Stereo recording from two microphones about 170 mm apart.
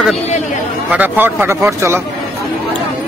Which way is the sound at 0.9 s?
10° right (ahead or behind).